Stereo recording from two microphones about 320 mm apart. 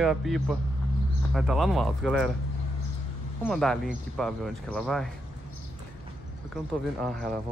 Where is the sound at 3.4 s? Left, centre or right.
Centre.